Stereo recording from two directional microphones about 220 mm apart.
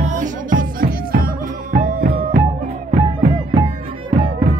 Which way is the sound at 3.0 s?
25° right (ahead or behind).